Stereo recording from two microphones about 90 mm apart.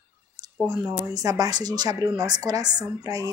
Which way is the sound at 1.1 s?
45° right (ahead or behind).